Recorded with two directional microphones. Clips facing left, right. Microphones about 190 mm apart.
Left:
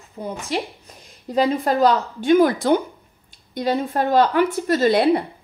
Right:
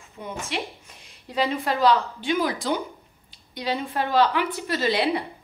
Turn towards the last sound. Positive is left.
turn(degrees=50)  # may be behind; listen again after turning